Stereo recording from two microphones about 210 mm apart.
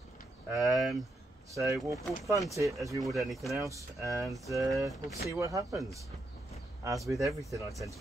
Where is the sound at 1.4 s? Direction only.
15° right (ahead or behind).